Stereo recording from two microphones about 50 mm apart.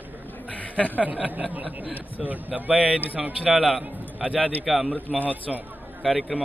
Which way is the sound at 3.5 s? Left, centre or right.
Centre.